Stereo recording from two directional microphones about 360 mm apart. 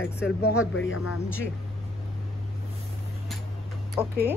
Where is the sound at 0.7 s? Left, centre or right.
Left.